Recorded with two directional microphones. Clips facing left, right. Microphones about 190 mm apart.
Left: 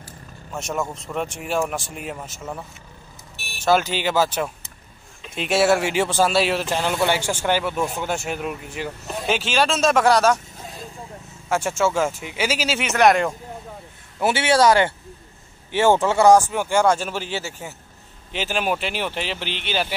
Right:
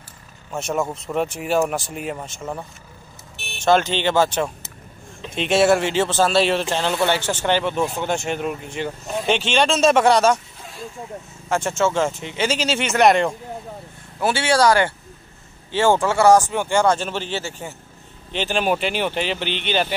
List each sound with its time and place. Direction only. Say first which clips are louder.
0.6 s speech: right 3 dB; centre (ahead or behind)
3.6 s speech: right 2 dB; 5° left (ahead or behind)
11.4 s speech: right 1 dB; 10° left (ahead or behind)
14.2 s speech: even; 20° left (ahead or behind); by 19.9 s 5° left (ahead or behind)